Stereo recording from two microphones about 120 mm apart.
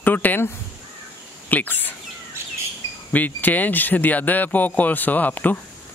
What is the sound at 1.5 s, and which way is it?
Speech, 15° left (ahead or behind).